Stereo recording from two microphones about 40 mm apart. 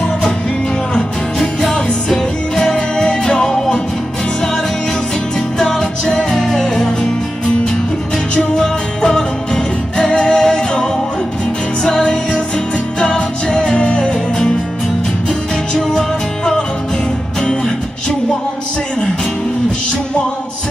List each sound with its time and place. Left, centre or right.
1.4 s music: centre
5.6 s music: centre
8.5 s music: centre
15.7 s music: centre